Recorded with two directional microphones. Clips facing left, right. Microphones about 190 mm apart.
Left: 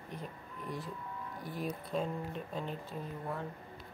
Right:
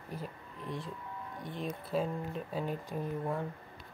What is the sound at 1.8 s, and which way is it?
Speech, 5° right (ahead or behind).